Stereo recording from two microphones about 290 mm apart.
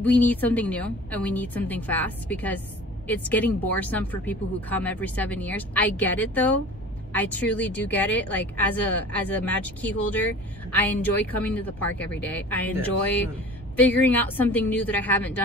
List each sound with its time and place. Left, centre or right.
0.0 s a woman's voice: centre